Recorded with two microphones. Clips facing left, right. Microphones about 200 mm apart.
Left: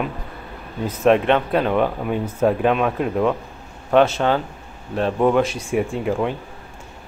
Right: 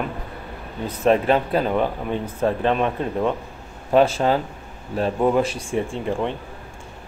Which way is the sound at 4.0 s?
35° right (ahead or behind).